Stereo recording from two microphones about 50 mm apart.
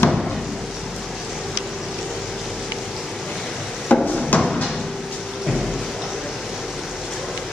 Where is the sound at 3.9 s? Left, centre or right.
Left.